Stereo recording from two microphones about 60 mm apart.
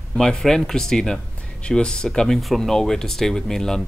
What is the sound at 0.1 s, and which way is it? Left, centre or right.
Speech, centre.